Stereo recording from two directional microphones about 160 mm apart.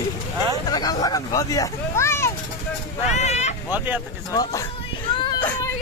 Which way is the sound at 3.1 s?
45° left (ahead or behind).